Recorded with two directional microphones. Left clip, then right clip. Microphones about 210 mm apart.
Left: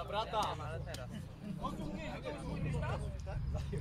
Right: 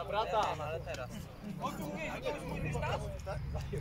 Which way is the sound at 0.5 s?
45° right (ahead or behind).